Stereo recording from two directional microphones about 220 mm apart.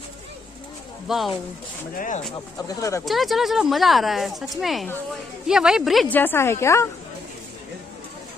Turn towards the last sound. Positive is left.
turn(degrees=10)  # may be behind; listen again after turning